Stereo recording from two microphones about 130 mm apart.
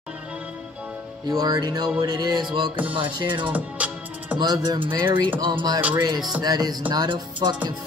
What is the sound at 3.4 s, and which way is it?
Music, 10° right (ahead or behind).